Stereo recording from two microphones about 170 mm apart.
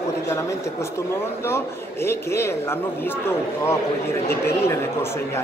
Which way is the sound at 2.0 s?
15° left (ahead or behind).